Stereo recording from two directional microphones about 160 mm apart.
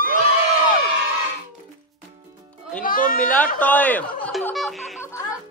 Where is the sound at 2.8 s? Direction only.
60° left (ahead or behind).